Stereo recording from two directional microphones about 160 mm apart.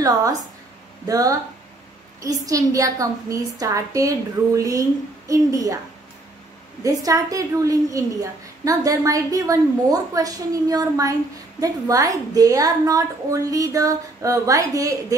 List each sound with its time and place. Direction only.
1.0 s a woman's voice: 20° right (ahead or behind)
6.8 s a woman's voice: 20° right (ahead or behind)